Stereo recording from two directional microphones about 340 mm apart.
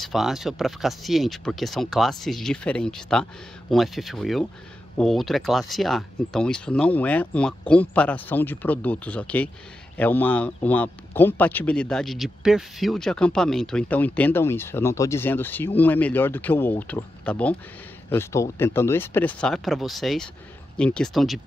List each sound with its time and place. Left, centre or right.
0.0 s speech: centre